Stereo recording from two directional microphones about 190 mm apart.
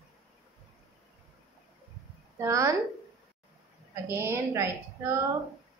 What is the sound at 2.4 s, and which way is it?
Speech, 15° right (ahead or behind).